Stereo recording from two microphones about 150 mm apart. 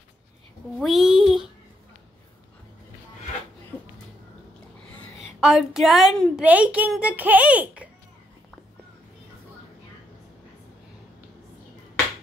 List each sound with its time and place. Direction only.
0.7 s a sound: centre (ahead or behind)
5.4 s a woman's voice: 5° right (ahead or behind)
6.4 s a child's voice: 10° right (ahead or behind)